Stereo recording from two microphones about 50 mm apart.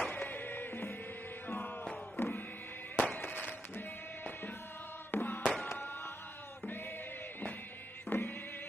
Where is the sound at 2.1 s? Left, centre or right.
Left.